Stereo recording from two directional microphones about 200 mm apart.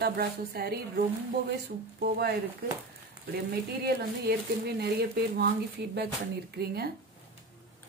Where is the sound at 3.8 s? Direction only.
55° right (ahead or behind).